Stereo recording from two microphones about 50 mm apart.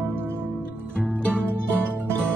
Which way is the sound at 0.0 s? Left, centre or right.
Right.